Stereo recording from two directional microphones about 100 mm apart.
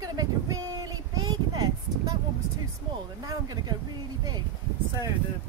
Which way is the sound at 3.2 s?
40° right (ahead or behind).